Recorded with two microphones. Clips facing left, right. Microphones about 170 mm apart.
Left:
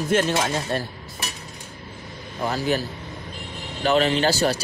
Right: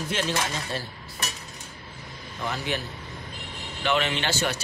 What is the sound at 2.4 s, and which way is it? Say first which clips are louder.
Speech: left 7 dB; 40° left (ahead or behind).